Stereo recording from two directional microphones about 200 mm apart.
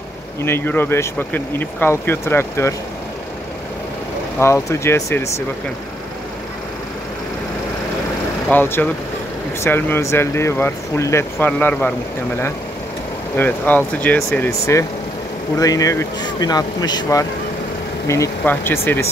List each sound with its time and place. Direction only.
0.4 s speech: 10° left (ahead or behind)
4.4 s speech: 15° left (ahead or behind)
8.5 s speech: 10° left (ahead or behind)
13.4 s speech: 10° left (ahead or behind)